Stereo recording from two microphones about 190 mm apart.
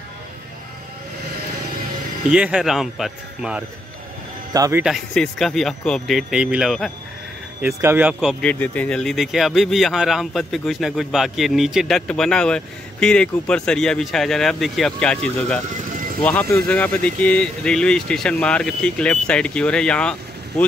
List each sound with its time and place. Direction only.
2.3 s speech: 5° right (ahead or behind)
4.6 s speech: 15° right (ahead or behind)
4.8 s speech: 5° left (ahead or behind)
7.6 s speech: 10° right (ahead or behind); by 20.6 s 5° left (ahead or behind)